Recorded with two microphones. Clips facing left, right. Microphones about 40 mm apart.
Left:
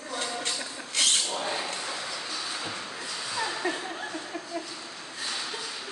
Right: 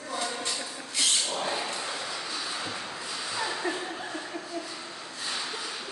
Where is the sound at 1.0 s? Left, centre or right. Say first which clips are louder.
Left 2 dB; left.